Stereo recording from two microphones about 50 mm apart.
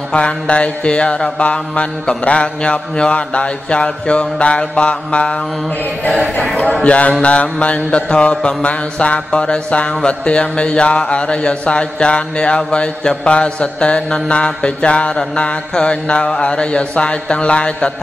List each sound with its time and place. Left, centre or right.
0.1 s mantra: left
6.6 s mantra: left